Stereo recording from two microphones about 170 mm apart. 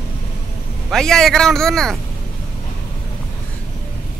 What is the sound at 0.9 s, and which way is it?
Speech, 5° left (ahead or behind).